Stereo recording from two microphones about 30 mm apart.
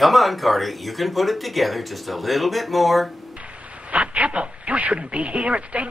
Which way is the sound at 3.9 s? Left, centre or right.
Right.